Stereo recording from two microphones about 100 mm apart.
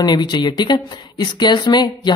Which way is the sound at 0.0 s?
45° left (ahead or behind).